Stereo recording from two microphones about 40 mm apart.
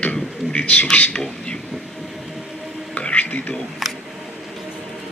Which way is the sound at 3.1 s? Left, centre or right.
Left.